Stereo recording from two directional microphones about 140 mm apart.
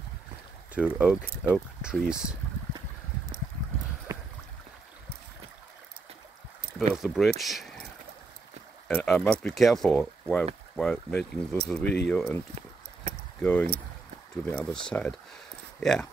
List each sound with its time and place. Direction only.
0.7 s speech: 10° right (ahead or behind)
4.1 s a sound: 25° right (ahead or behind)
7.0 s speech: centre (ahead or behind)
8.8 s speech: 5° left (ahead or behind)
12.5 s a sound: 40° right (ahead or behind)
13.4 s speech: 10° left (ahead or behind)